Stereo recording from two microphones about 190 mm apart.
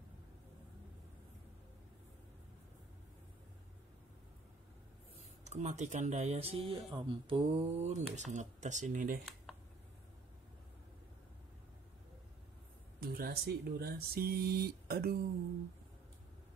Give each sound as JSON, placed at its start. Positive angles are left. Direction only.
{"t": 5.4, "sound": "speech", "side_deg": -35}
{"t": 9.5, "sound": "a sound", "side_deg": 0}
{"t": 13.0, "sound": "speech", "side_deg": -50}